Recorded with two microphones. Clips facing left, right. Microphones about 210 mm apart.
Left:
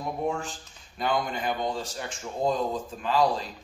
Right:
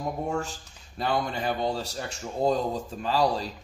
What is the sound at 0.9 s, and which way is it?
A man's voice, 35° right (ahead or behind).